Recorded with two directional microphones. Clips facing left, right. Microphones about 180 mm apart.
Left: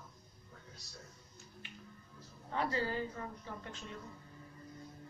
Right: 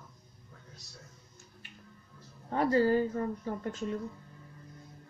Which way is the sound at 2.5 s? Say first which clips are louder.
Right 10 dB; 45° right (ahead or behind).